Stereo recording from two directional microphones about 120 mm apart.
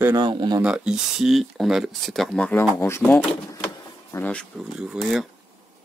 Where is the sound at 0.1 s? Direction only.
40° right (ahead or behind).